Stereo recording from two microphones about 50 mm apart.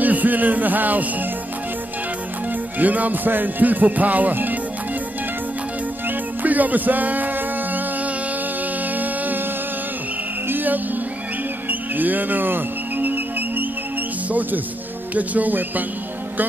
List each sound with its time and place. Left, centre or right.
0.0 s speech: right
2.8 s music: right
6.0 s music: right
8.9 s music: right
10.5 s music: right
12.0 s music: right
15.1 s music: right